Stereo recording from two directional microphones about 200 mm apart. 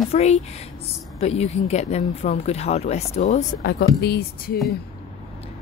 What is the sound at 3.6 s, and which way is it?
Speech, 55° left (ahead or behind).